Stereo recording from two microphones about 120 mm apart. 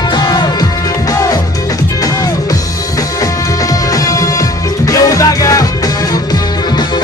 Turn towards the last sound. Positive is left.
turn(degrees=30)  # may be behind; listen again after turning